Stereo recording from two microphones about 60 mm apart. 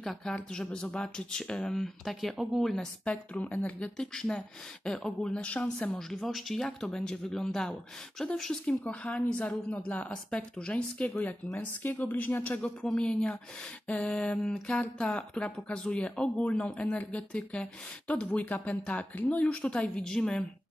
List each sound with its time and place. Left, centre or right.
0.0 s speech: centre
1.8 s speech: centre
2.7 s speech: centre
5.9 s speech: centre
9.1 s a woman's voice: left
12.8 s speech: centre